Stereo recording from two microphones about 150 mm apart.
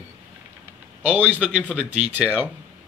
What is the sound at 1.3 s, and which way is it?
Speech, 5° right (ahead or behind).